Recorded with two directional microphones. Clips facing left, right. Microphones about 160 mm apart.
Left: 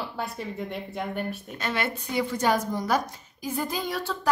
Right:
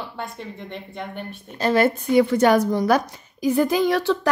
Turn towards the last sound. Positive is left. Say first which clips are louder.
# right 8 dB
turn(degrees=-80)